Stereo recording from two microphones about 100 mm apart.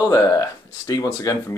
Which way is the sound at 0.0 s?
40° left (ahead or behind).